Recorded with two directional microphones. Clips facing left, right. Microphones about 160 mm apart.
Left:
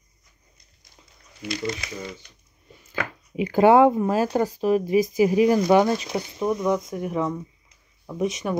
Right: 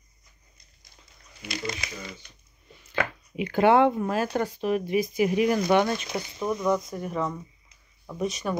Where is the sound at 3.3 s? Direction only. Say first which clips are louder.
Left 4 dB; 40° left (ahead or behind).